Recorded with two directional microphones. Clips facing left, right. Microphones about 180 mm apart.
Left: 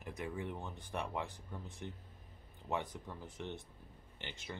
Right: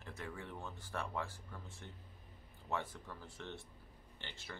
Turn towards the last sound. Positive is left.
turn(degrees=20)  # may be behind; listen again after turning